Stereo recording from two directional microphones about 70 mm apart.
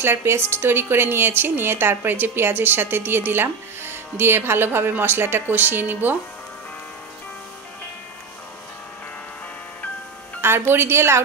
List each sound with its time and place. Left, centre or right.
0.0 s a woman's voice: right
10.4 s a woman's voice: right